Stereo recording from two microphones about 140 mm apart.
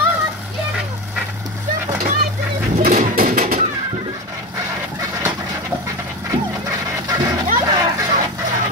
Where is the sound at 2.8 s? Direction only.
90° right.